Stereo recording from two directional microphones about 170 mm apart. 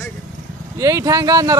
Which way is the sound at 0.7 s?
20° right (ahead or behind).